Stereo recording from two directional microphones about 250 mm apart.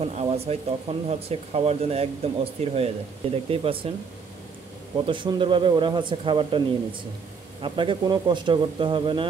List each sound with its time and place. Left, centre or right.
0.0 s speech: right
4.9 s speech: centre